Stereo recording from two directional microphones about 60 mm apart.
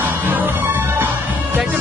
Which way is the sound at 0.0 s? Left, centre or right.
Right.